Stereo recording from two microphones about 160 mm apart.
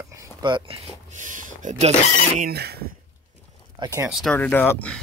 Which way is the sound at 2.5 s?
90° right.